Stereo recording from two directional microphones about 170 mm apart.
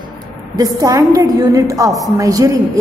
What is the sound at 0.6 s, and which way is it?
A woman's voice, 20° right (ahead or behind).